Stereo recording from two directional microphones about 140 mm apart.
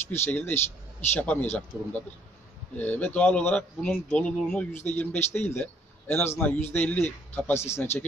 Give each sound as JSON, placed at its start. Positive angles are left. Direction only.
{"t": 0.1, "sound": "a man's voice", "side_deg": 15}